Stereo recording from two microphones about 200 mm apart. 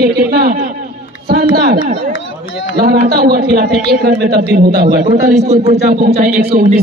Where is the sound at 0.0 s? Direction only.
50° right (ahead or behind).